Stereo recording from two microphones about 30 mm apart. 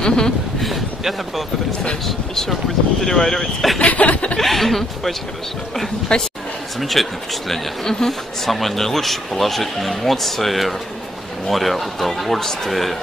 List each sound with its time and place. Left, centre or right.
0.0 s speech: left
0.6 s a sound: centre
2.0 s speech: centre
3.9 s chuckle: left
4.4 s speech: centre
6.1 s a woman's voice: left
6.8 s speech: centre
8.1 s speech: centre